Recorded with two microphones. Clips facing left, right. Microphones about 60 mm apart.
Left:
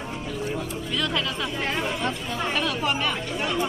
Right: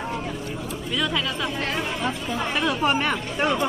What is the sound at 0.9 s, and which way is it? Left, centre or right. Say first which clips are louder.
Speech: right 2 dB; centre.